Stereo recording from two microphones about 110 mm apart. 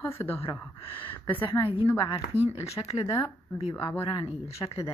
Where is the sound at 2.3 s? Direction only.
70° left (ahead or behind).